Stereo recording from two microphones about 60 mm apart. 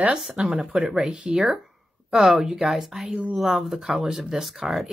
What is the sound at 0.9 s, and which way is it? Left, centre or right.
Speech, centre.